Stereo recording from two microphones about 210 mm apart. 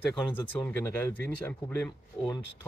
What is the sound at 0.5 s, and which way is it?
Speech, 10° left (ahead or behind).